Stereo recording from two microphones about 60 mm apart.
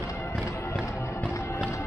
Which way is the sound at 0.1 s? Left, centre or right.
Left.